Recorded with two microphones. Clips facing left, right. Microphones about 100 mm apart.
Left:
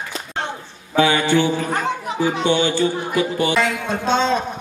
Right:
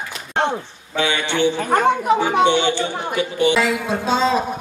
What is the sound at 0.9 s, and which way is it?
Speech, 40° left (ahead or behind).